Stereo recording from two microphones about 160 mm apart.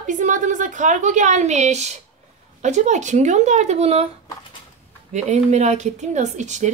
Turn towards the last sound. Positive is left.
turn(degrees=-50)  # may be behind; listen again after turning